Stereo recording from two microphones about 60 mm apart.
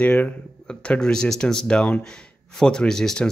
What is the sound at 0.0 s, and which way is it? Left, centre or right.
Speech, left.